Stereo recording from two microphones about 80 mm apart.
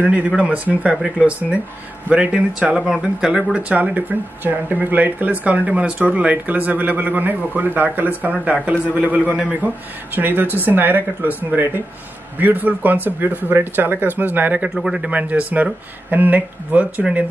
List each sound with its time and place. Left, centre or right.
0.4 s speech: centre